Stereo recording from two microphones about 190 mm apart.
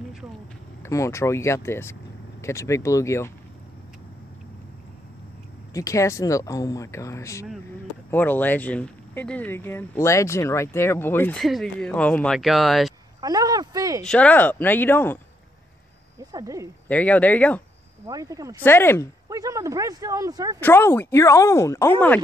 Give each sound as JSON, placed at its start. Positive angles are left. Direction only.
{"t": 0.8, "sound": "speech", "side_deg": 15}
{"t": 5.7, "sound": "speech", "side_deg": 15}
{"t": 13.2, "sound": "a sound", "side_deg": -20}
{"t": 14.0, "sound": "speech", "side_deg": 5}
{"t": 16.3, "sound": "speech", "side_deg": -20}
{"t": 16.8, "sound": "speech", "side_deg": 10}
{"t": 18.0, "sound": "speech", "side_deg": -20}
{"t": 18.6, "sound": "speech", "side_deg": 10}
{"t": 19.2, "sound": "speech", "side_deg": -15}
{"t": 20.6, "sound": "speech", "side_deg": 10}